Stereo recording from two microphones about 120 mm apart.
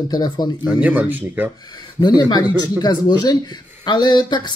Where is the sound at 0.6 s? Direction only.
15° right (ahead or behind).